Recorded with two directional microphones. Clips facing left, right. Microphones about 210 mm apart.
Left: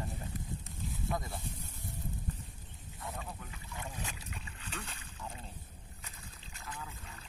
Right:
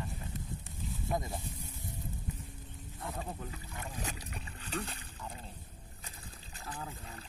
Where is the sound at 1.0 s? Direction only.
20° right (ahead or behind).